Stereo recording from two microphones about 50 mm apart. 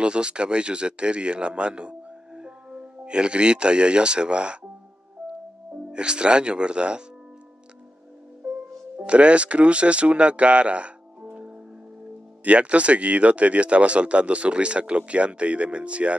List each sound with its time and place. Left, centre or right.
0.0 s a man's voice: centre
5.9 s speech: centre
8.9 s speech: right